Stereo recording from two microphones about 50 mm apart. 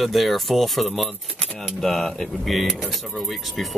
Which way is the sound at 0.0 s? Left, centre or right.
Centre.